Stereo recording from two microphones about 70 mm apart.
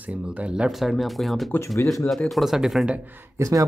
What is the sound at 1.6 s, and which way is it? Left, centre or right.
Speech, left.